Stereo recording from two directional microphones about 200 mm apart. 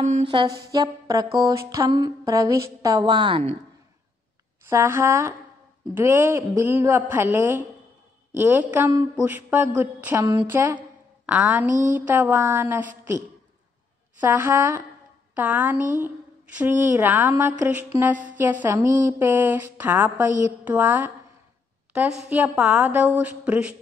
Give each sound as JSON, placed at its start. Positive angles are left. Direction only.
{"t": 0.3, "sound": "a sound", "side_deg": -25}
{"t": 0.7, "sound": "a woman's voice", "side_deg": -20}
{"t": 4.6, "sound": "a woman's voice", "side_deg": -10}
{"t": 14.2, "sound": "a woman's voice", "side_deg": -10}